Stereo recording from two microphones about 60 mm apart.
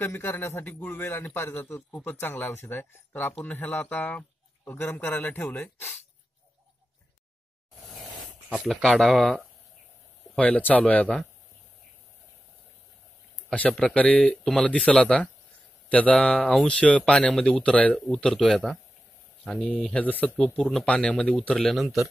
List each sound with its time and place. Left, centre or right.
0.0 s speech: left
8.8 s speech: centre
10.4 s speech: left
13.5 s speech: centre
14.4 s speech: centre
14.7 s speech: left
19.5 s speech: left
20.2 s speech: centre
21.5 s speech: centre